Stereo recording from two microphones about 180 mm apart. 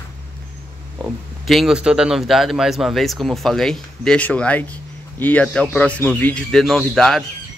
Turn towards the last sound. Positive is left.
turn(degrees=0)  # may be behind; listen again after turning